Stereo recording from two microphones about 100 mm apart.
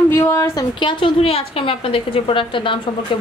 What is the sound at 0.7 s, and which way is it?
A woman's voice, 55° left (ahead or behind).